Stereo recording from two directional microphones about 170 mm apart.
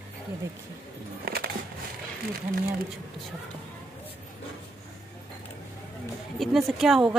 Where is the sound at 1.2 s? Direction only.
65° right (ahead or behind).